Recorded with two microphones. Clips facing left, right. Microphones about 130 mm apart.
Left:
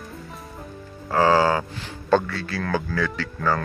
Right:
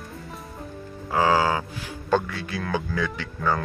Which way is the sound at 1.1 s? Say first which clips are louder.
Left 3 dB; 10° right (ahead or behind).